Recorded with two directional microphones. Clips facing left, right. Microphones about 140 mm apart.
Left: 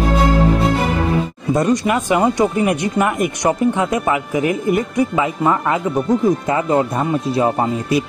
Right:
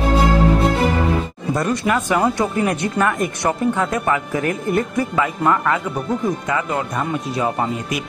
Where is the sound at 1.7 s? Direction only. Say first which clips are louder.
Left 2 dB; 15° left (ahead or behind).